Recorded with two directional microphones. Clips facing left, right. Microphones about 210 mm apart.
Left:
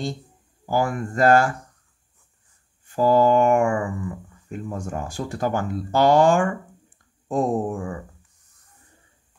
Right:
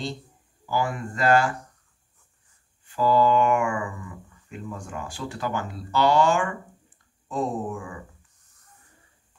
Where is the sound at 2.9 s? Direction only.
45° left (ahead or behind).